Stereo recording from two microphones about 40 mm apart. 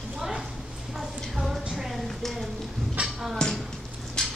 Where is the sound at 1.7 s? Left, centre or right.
Centre.